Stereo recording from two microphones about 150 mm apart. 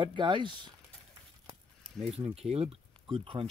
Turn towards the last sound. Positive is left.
turn(degrees=-35)  # may be behind; listen again after turning